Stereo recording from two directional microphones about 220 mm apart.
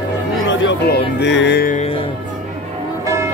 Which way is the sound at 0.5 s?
55° left (ahead or behind).